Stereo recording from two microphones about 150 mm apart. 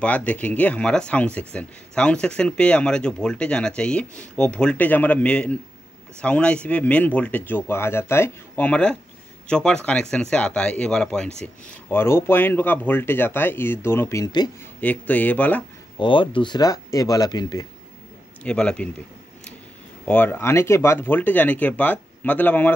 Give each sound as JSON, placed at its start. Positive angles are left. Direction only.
{"t": 0.0, "sound": "a man's voice", "side_deg": 10}
{"t": 11.9, "sound": "speech", "side_deg": 15}
{"t": 14.8, "sound": "speech", "side_deg": 10}
{"t": 16.0, "sound": "speech", "side_deg": 35}
{"t": 18.4, "sound": "speech", "side_deg": 5}
{"t": 20.1, "sound": "speech", "side_deg": 10}